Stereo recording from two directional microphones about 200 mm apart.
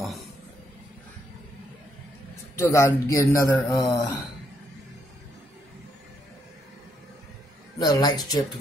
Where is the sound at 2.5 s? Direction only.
15° left (ahead or behind).